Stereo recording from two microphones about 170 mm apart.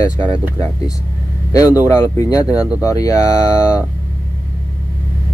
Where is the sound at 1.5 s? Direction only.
20° left (ahead or behind).